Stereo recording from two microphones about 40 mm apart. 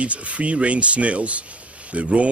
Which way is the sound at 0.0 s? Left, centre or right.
Right.